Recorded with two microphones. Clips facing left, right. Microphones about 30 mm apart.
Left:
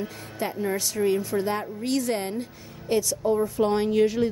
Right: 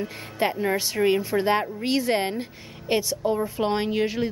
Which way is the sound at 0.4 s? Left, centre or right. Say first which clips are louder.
Right 4 dB; right.